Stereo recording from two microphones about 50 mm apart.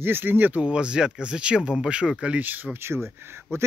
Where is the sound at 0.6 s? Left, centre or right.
Centre.